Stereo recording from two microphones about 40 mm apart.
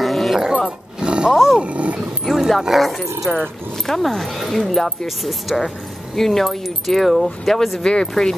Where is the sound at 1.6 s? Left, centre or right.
Right.